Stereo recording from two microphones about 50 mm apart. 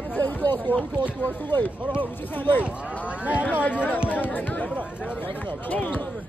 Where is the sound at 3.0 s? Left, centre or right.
Right.